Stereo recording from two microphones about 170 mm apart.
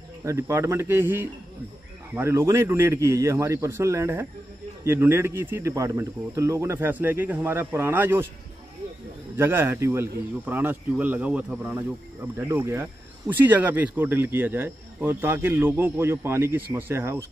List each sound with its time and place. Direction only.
0.2 s speech: 15° right (ahead or behind)
9.4 s speech: 15° right (ahead or behind)